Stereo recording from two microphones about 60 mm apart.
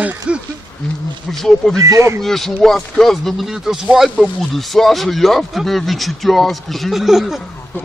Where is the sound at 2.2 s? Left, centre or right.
Centre.